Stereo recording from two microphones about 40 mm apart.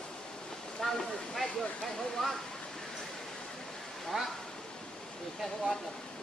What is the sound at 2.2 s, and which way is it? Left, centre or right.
Speech, centre.